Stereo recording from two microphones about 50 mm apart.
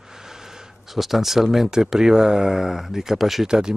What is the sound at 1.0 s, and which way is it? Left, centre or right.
A man's voice, centre.